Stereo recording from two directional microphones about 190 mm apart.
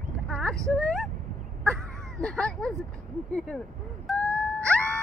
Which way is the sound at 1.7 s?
5° left (ahead or behind).